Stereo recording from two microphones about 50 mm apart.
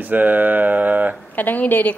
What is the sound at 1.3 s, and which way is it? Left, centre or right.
Speech, left.